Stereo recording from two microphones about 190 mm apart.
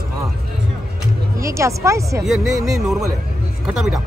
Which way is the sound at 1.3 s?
15° right (ahead or behind).